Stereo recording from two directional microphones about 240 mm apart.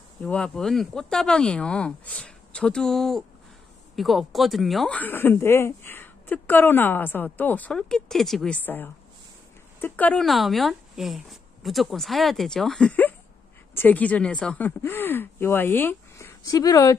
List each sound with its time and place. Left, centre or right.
0.2 s speech: centre